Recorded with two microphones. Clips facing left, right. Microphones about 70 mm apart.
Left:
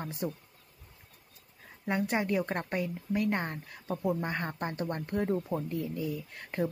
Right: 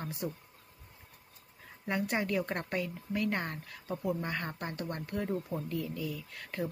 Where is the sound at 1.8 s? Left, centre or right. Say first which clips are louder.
Left 2 dB; centre.